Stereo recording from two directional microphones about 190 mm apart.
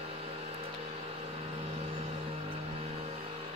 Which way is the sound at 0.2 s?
30° right (ahead or behind).